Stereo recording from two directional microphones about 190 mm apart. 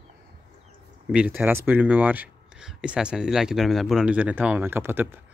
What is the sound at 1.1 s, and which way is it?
Speech, 10° right (ahead or behind).